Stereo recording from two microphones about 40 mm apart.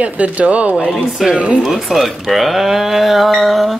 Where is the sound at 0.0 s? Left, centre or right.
Right.